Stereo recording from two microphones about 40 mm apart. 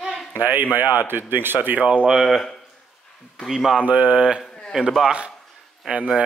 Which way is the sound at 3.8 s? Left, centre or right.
Right.